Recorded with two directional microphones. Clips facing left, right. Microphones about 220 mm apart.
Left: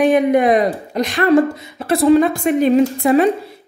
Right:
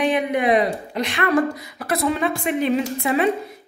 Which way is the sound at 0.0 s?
45° left (ahead or behind).